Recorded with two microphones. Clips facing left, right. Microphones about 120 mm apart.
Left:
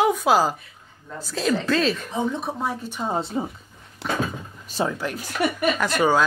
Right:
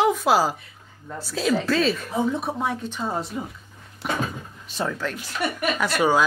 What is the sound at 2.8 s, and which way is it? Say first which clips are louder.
Speech: left 1 dB; 10° left (ahead or behind).